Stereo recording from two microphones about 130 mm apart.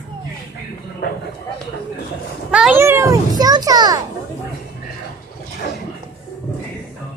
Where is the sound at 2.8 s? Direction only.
20° right (ahead or behind).